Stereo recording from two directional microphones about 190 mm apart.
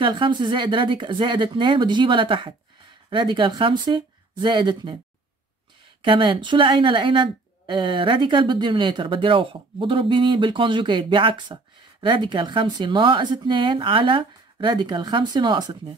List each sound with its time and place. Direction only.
0.0 s speech: 25° right (ahead or behind)
6.0 s speech: 25° right (ahead or behind)